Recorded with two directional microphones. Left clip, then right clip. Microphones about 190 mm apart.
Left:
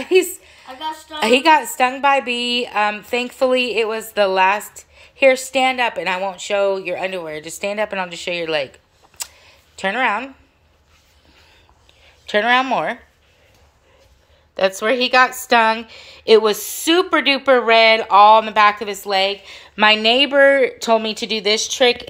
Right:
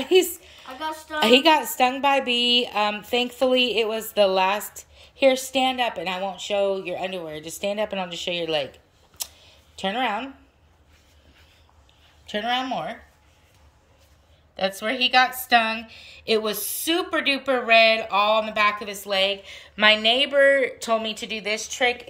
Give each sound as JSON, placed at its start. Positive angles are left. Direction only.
{"t": 0.1, "sound": "a sound", "side_deg": -5}
{"t": 1.2, "sound": "a woman's voice", "side_deg": -5}
{"t": 9.2, "sound": "camera", "side_deg": 0}
{"t": 12.3, "sound": "speech", "side_deg": 15}
{"t": 14.5, "sound": "a woman's voice", "side_deg": 20}